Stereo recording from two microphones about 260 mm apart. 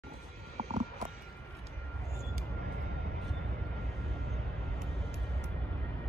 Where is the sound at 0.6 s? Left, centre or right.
Right.